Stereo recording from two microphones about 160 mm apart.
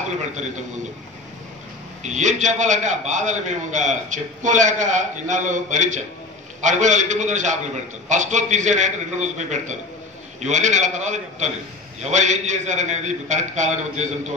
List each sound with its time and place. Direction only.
2.0 s a man's voice: 50° right (ahead or behind)